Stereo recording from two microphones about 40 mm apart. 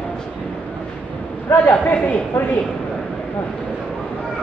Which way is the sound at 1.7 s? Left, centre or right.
Left.